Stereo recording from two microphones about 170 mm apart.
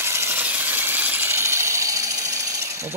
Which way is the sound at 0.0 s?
15° right (ahead or behind).